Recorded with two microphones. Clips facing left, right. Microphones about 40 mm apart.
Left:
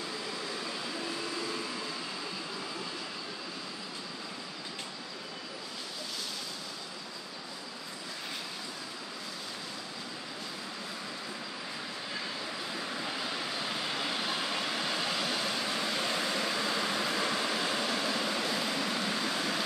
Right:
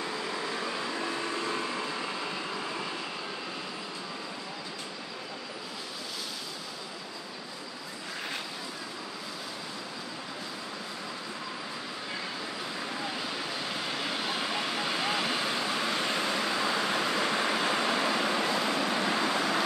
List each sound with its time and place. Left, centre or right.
1.0 s vehicle: right
13.0 s vehicle: centre; by 19.6 s right